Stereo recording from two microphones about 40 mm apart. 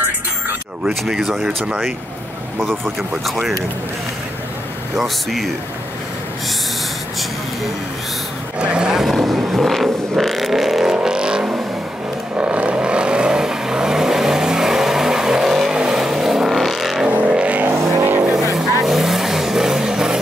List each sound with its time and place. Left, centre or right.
1.0 s speech: centre
3.0 s speech: centre
4.9 s speech: centre
8.5 s vehicle: right
9.1 s vehicle: centre; by 11.6 s right
12.4 s vehicle: right; by 15.7 s centre
15.7 s vehicle: centre
16.4 s vehicle: centre
17.3 s vehicle: right
17.6 s vehicle: right
18.3 s vehicle: centre